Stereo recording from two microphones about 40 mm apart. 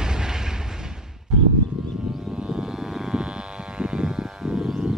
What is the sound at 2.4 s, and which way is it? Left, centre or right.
Vehicle, right.